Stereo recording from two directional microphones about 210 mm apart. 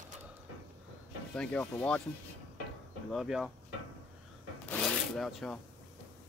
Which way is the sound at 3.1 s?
Centre (ahead or behind).